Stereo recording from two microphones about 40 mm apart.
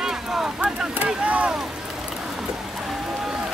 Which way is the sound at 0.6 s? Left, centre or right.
Right.